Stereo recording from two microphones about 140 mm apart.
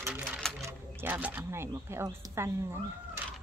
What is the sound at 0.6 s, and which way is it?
Speech, 15° right (ahead or behind).